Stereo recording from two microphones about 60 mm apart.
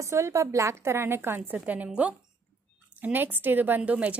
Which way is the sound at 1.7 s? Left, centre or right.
Right.